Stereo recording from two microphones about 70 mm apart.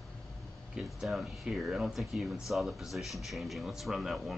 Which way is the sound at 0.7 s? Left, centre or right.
Centre.